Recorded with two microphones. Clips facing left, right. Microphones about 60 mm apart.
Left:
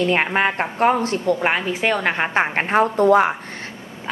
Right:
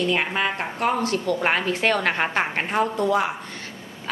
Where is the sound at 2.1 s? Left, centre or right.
Left.